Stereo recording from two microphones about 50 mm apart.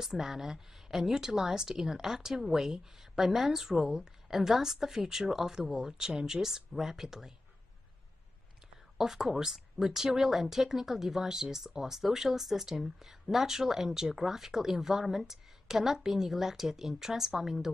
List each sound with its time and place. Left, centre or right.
0.0 s speech: centre
8.9 s speech: centre